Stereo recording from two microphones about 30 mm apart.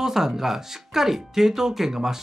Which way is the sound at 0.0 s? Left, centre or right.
Centre.